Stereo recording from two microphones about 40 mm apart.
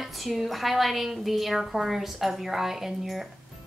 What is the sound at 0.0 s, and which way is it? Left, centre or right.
A woman's voice, centre.